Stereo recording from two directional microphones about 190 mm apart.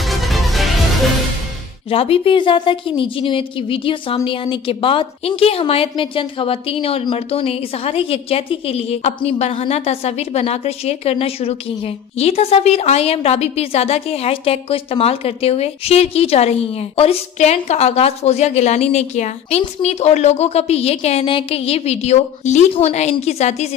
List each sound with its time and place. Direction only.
0.0 s music: centre (ahead or behind)
1.9 s a woman's voice: 30° left (ahead or behind)